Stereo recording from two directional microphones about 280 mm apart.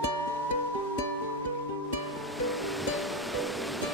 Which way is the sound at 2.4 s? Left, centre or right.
Centre.